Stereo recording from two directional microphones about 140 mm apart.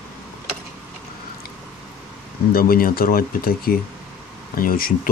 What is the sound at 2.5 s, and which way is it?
Speech, 90° left.